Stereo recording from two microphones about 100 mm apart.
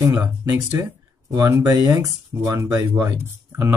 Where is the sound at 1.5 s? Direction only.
25° right (ahead or behind).